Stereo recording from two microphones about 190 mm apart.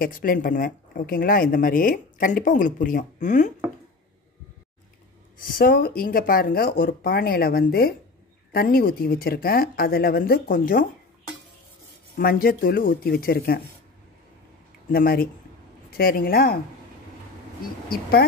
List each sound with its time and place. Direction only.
0.0 s speech: 50° left (ahead or behind)
5.4 s speech: 50° left (ahead or behind)
12.2 s speech: 50° left (ahead or behind)
14.9 s speech: 50° left (ahead or behind)
17.8 s speech: 50° left (ahead or behind)